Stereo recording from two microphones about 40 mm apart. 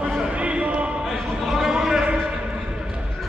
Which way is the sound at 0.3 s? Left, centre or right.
Right.